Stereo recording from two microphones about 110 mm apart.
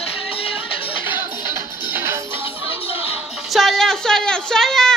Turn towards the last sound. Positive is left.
turn(degrees=5)  # may be behind; listen again after turning